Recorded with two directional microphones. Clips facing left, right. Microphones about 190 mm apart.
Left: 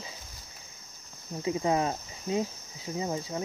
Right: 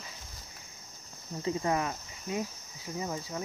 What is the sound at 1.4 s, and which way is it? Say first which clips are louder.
Cricket: left 3 dB; 15° left (ahead or behind).